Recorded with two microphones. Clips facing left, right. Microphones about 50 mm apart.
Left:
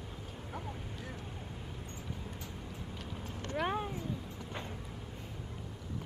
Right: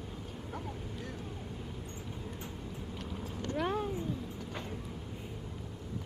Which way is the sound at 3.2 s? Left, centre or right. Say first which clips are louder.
Right 2 dB; left.